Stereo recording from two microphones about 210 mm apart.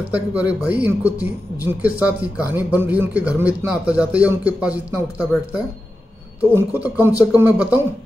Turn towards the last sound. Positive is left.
turn(degrees=-10)  # may be behind; listen again after turning